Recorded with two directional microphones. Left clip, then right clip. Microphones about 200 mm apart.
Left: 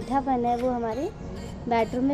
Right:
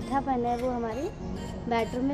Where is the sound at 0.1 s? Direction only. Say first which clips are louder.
Left 3 dB; 20° left (ahead or behind).